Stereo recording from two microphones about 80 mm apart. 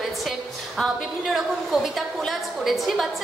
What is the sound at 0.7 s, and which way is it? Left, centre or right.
A woman's voice, centre.